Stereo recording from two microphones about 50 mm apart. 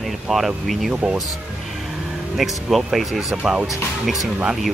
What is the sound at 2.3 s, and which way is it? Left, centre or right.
Speech, centre.